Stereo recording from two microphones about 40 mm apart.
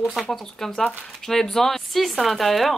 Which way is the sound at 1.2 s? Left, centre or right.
Centre.